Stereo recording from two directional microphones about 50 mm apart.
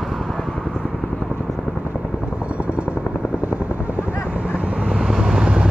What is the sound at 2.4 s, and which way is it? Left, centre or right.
Helicopter, right.